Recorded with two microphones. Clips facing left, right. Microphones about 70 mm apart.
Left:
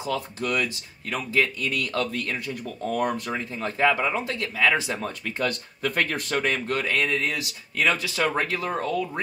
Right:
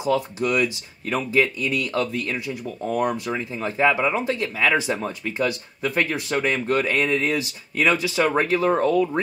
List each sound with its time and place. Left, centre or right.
0.0 s speech: centre
3.0 s speech: centre; by 9.2 s right